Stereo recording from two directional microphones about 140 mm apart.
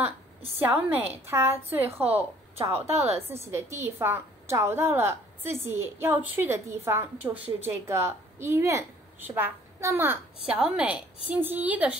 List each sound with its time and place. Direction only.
0.6 s a woman's voice: 15° right (ahead or behind)
2.7 s speech: 50° right (ahead or behind)
3.5 s a woman's voice: 15° right (ahead or behind)